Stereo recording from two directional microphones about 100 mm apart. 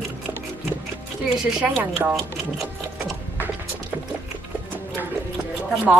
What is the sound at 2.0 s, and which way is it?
Speech, 20° right (ahead or behind).